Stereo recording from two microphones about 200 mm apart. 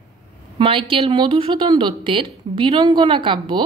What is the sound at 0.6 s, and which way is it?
Speech, 25° right (ahead or behind).